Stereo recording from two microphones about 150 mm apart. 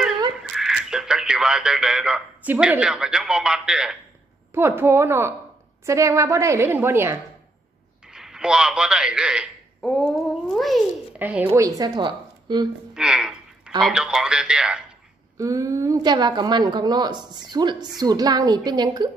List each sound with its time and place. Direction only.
0.4 s speech: 5° right (ahead or behind)
4.6 s a woman's voice: 15° right (ahead or behind)
8.1 s a man's voice: 5° right (ahead or behind)
9.8 s speech: 5° left (ahead or behind)
11.1 s a woman's voice: 10° right (ahead or behind)
11.6 s speech: 25° right (ahead or behind)
12.9 s speech: 5° right (ahead or behind)
15.3 s a woman's voice: 20° right (ahead or behind)